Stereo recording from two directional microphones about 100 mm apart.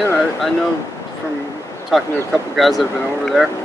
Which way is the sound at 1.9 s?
Centre (ahead or behind).